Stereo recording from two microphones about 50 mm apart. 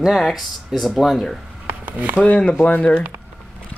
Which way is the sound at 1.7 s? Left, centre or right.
Right.